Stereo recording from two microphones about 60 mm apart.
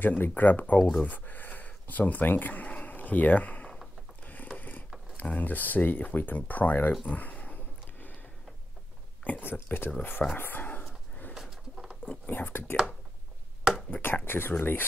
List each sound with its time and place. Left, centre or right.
0.0 s speech: left
4.2 s mechanisms: left
5.1 s speech: left
7.1 s a sound: left
9.2 s speech: left
11.5 s pigeon: centre
12.1 s speech: left
13.8 s speech: left